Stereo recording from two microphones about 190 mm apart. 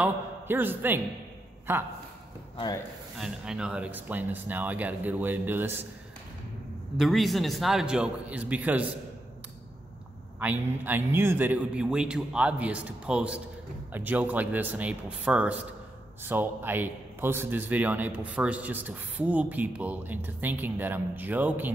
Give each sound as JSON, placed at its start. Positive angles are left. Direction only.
{"t": 0.0, "sound": "a man's voice", "side_deg": -10}
{"t": 2.5, "sound": "speech", "side_deg": 25}
{"t": 3.2, "sound": "a man's voice", "side_deg": -5}
{"t": 7.0, "sound": "a man's voice", "side_deg": 0}
{"t": 10.4, "sound": "a man's voice", "side_deg": -10}